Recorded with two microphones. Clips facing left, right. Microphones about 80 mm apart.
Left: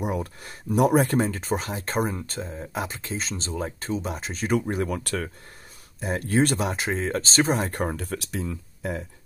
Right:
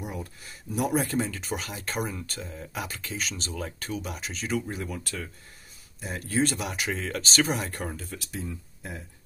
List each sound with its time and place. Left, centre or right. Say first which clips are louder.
0.0 s speech: left 8 dB; left
5.9 s speech: left 5 dB; left
7.8 s speech: left 7 dB; left